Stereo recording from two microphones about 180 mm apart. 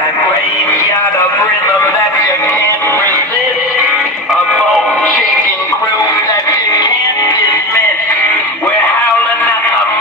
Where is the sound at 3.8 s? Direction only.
Centre (ahead or behind).